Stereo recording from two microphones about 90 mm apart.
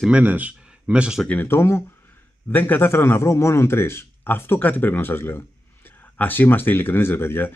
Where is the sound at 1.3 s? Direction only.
20° left (ahead or behind).